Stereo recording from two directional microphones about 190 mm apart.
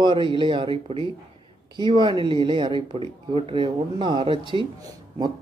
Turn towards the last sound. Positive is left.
turn(degrees=-20)  # may be behind; listen again after turning